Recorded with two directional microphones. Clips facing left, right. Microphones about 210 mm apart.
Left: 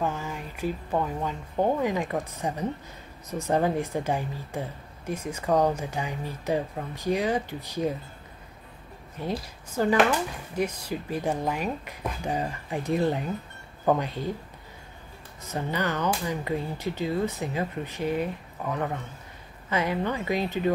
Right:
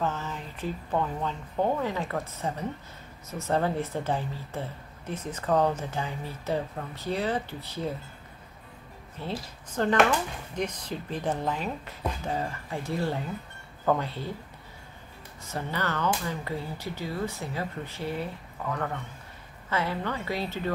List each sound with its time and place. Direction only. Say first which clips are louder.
0.0 s a woman's voice: left 1 dB; 10° left (ahead or behind)
9.2 s a woman's voice: left 3 dB; 10° left (ahead or behind)
15.5 s a woman's voice: left 3 dB; 15° left (ahead or behind)